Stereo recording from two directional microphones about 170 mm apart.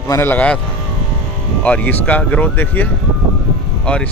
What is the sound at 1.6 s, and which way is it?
Speech, 10° left (ahead or behind).